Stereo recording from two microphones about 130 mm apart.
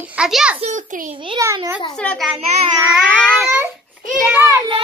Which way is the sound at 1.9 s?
5° left (ahead or behind).